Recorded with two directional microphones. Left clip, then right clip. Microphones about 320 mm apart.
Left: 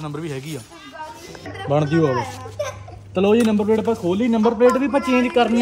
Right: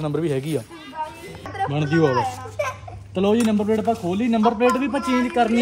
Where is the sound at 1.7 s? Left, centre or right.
Centre.